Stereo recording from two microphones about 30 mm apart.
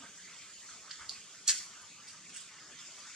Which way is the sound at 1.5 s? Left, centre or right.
Right.